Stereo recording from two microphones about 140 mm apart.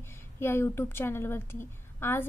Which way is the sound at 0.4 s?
15° left (ahead or behind).